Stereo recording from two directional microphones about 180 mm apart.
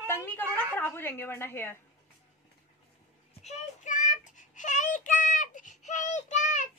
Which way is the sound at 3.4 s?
40° left (ahead or behind).